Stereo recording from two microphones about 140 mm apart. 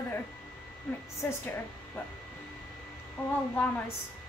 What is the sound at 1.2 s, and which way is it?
Speech, 10° left (ahead or behind).